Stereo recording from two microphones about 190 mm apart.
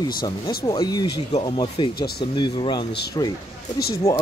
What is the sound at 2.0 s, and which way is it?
Speech, 55° left (ahead or behind).